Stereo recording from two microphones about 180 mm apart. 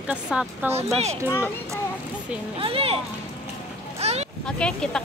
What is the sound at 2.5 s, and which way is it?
Speech, 30° right (ahead or behind).